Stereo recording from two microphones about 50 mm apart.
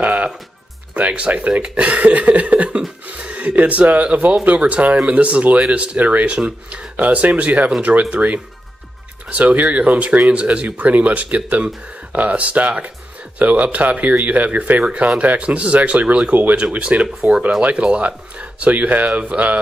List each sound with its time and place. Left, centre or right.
0.0 s music: right
0.9 s speech: right